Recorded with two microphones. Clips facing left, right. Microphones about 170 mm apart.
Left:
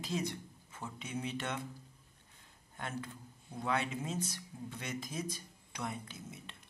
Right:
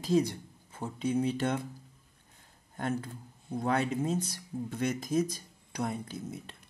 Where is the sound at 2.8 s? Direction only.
40° right (ahead or behind).